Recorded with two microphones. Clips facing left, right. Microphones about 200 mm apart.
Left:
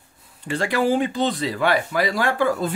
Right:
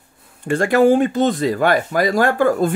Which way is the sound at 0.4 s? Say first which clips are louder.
Right 8 dB; 50° right (ahead or behind).